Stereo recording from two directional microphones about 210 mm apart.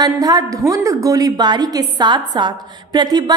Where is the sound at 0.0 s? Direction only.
20° right (ahead or behind).